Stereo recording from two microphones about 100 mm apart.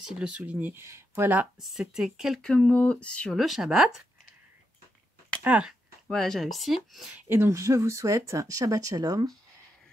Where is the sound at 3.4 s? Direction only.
5° right (ahead or behind).